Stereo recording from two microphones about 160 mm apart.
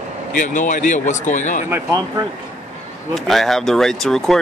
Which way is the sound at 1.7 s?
25° right (ahead or behind).